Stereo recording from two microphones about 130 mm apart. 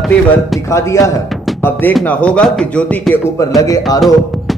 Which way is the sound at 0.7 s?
25° left (ahead or behind).